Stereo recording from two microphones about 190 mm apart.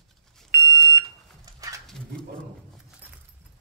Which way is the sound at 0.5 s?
60° right (ahead or behind).